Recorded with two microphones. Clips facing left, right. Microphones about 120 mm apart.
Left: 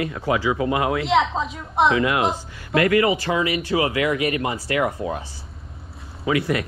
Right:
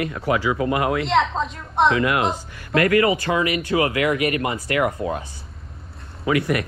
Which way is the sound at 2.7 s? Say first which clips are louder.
Even; 25° left (ahead or behind).